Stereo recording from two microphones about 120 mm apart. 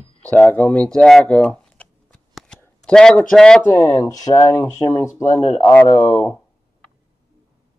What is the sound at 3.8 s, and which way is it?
Speech, 30° left (ahead or behind).